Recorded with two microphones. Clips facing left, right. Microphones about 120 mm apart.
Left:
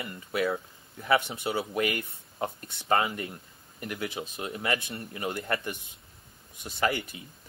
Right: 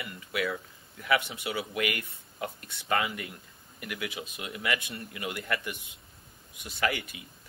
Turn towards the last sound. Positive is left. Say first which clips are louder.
# left 2 dB
turn(degrees=35)  # may be behind; listen again after turning